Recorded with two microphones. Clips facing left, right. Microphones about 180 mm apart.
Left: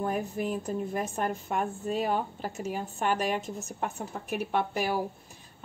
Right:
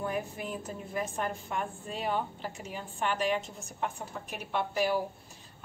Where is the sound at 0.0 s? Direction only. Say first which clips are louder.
Left 4 dB; 45° left (ahead or behind).